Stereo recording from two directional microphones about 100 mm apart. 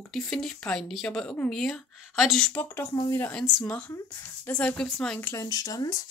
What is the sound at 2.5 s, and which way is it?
Speech, 20° left (ahead or behind).